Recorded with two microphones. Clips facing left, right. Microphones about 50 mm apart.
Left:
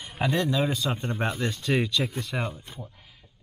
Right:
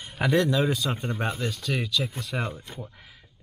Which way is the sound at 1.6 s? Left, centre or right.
Left.